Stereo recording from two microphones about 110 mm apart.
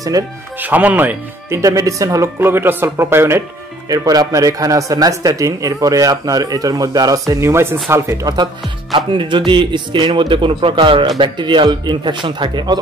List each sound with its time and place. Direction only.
0.1 s a man's voice: 35° right (ahead or behind)
0.6 s speech: 15° right (ahead or behind)
1.6 s speech: 30° right (ahead or behind)
3.9 s a man's voice: 35° right (ahead or behind)
8.9 s speech: 45° right (ahead or behind)